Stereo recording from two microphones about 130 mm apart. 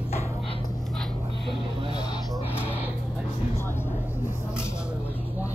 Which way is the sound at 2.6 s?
10° right (ahead or behind).